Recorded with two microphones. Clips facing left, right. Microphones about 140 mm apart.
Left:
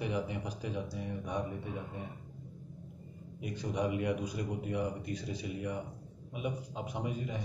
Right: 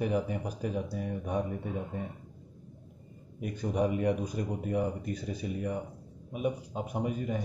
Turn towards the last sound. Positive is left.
turn(degrees=-50)  # may be behind; listen again after turning